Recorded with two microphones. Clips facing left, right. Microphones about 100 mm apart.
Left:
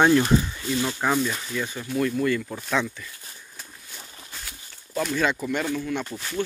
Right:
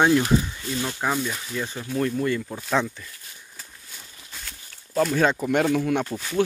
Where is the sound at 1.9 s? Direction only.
30° right (ahead or behind).